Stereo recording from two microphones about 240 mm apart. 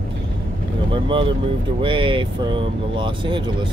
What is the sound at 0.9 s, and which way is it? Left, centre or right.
Speech, right.